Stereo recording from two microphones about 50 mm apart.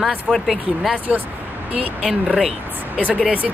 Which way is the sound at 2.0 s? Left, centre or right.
Centre.